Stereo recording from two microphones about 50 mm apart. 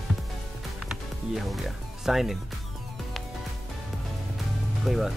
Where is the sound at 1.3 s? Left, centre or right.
Centre.